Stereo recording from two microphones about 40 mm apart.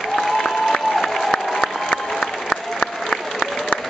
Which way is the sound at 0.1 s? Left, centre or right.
Centre.